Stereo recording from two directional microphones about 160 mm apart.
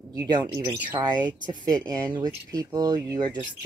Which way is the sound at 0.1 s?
25° right (ahead or behind).